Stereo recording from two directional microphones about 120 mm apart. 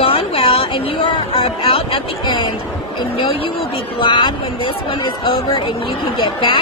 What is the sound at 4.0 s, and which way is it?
Speech, 40° left (ahead or behind).